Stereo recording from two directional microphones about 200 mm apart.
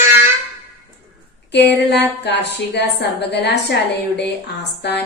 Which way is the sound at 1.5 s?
60° left (ahead or behind).